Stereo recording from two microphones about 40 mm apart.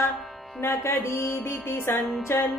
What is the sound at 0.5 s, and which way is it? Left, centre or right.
Music, left.